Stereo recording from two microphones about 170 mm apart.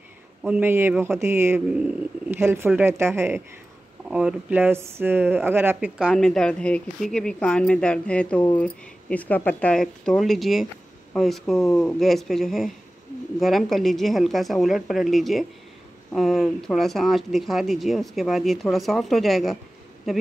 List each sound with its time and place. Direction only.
0.4 s speech: 10° right (ahead or behind)